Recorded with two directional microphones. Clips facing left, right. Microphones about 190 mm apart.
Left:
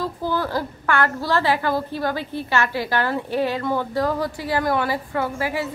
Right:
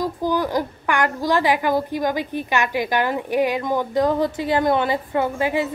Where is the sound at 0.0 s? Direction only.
15° right (ahead or behind).